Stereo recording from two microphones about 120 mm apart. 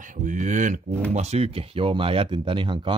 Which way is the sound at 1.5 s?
50° right (ahead or behind).